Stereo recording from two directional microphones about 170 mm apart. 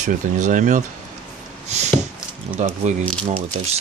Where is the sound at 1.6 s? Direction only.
40° right (ahead or behind).